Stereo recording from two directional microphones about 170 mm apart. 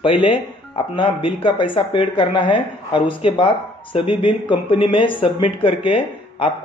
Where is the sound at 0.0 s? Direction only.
30° left (ahead or behind).